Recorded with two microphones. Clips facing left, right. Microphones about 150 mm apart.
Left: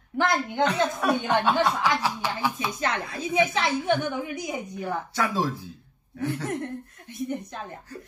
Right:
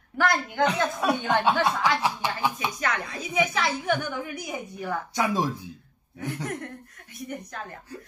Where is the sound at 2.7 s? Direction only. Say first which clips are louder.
Left 1 dB; 25° left (ahead or behind).